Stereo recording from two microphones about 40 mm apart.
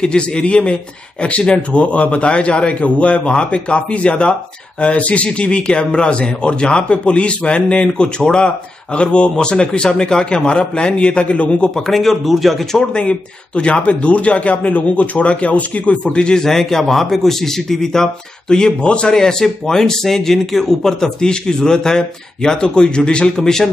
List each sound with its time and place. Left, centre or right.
0.0 s a man's voice: left
11.7 s speech: centre
12.7 s speech: left
16.4 s speech: centre